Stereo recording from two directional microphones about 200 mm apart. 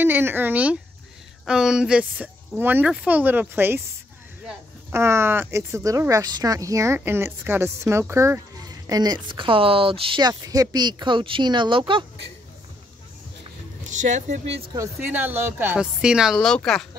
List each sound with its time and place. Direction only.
0.0 s speech: 10° right (ahead or behind)
4.9 s speech: 10° right (ahead or behind)
13.8 s speech: 35° right (ahead or behind)
14.8 s speech: 10° right (ahead or behind)